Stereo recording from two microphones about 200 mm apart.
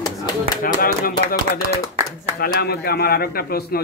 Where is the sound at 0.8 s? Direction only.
45° left (ahead or behind).